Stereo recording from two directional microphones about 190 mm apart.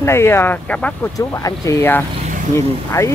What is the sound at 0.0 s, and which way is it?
Speech, 15° left (ahead or behind).